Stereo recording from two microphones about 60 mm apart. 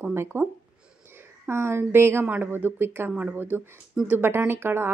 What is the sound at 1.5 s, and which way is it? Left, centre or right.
A woman's voice, right.